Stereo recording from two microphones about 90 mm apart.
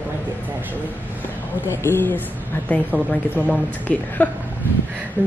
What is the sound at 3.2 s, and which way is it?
Speech, 15° right (ahead or behind).